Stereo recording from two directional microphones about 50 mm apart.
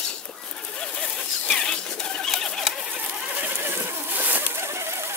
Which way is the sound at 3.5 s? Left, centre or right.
Right.